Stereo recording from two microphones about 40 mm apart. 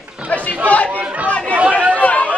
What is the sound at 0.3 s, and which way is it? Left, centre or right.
Chatter, left.